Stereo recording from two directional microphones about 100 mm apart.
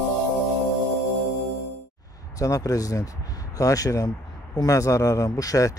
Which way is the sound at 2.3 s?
35° left (ahead or behind).